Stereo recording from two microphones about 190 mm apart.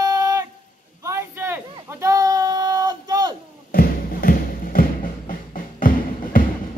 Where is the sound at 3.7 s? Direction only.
50° left (ahead or behind).